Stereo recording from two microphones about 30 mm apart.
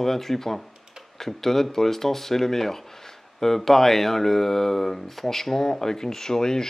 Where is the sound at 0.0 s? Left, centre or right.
Centre.